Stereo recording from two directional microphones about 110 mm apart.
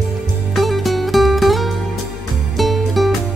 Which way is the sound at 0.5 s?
Centre (ahead or behind).